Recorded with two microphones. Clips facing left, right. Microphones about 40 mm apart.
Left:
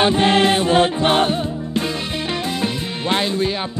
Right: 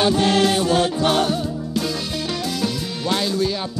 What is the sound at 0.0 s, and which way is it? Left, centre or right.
Music, left.